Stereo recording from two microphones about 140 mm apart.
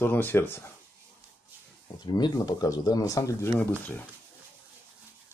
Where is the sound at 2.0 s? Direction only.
30° left (ahead or behind); by 4.0 s 10° left (ahead or behind).